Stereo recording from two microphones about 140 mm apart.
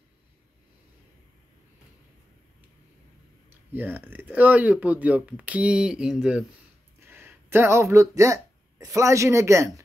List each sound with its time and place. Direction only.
3.4 s speech: 15° right (ahead or behind)
7.0 s speech: 15° right (ahead or behind)